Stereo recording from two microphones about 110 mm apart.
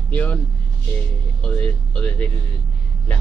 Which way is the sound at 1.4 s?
10° left (ahead or behind).